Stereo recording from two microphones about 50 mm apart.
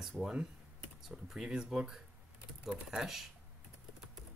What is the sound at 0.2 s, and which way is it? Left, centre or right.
Speech, centre.